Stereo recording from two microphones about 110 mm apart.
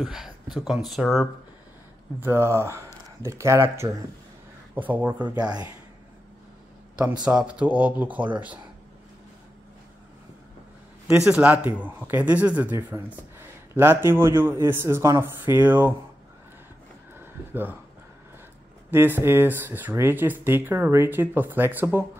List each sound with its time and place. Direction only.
0.0 s speech: 5° right (ahead or behind)
2.1 s speech: 20° right (ahead or behind)
7.2 s speech: 10° right (ahead or behind)
11.2 s speech: 10° right (ahead or behind)
17.1 s a sound: 20° right (ahead or behind)
18.9 s speech: 20° right (ahead or behind)